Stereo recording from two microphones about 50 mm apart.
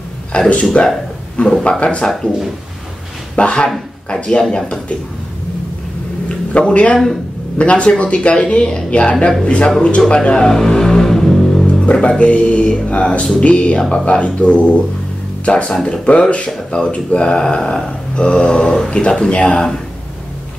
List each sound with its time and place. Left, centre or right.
0.3 s speech: left
3.3 s speech: left
6.2 s a sound: left
7.5 s speech: left; by 11.6 s centre
11.6 s speech: left